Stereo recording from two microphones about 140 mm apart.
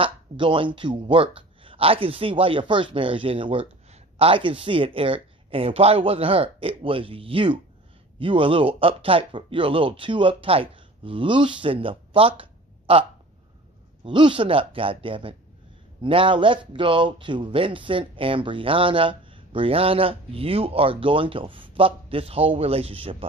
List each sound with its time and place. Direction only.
0.0 s speech: 35° right (ahead or behind)
14.0 s speech: 35° right (ahead or behind)